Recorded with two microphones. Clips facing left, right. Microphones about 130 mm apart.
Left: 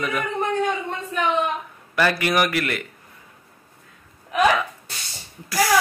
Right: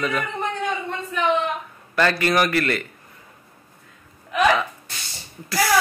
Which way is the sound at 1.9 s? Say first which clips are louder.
Right 1 dB; 10° left (ahead or behind).